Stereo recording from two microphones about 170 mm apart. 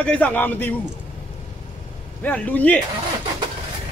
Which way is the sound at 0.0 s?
10° left (ahead or behind).